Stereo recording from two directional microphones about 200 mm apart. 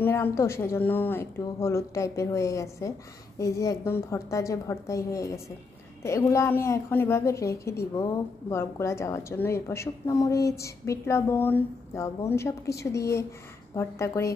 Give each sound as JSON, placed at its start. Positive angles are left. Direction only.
{"t": 0.0, "sound": "a woman's voice", "side_deg": 10}